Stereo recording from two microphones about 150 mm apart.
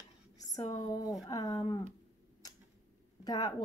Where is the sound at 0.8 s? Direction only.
25° left (ahead or behind).